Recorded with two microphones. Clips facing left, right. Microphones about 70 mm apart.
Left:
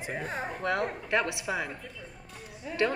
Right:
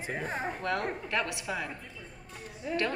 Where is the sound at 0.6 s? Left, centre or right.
Centre.